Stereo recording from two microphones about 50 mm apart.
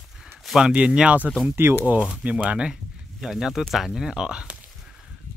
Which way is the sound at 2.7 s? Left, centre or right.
Centre.